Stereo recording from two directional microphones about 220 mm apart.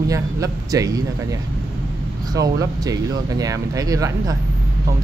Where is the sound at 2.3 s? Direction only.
15° right (ahead or behind).